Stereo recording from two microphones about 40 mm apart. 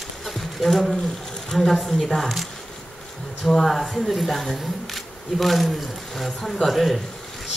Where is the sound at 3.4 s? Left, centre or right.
Centre.